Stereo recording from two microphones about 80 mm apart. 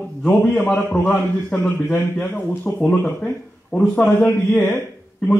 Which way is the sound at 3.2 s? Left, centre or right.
Centre.